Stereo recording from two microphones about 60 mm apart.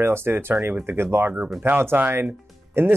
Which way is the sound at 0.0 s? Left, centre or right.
Right.